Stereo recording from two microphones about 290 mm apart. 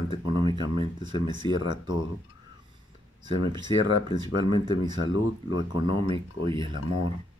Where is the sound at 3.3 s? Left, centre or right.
Centre.